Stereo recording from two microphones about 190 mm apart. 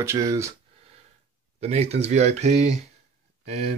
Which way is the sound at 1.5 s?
35° right (ahead or behind).